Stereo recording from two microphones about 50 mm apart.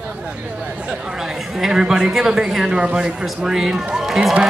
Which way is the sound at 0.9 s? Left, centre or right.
Centre.